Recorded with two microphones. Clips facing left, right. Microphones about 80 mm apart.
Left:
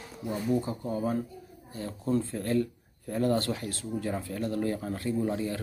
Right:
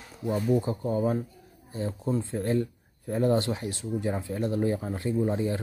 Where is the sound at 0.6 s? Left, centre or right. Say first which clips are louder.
Right 4 dB; right.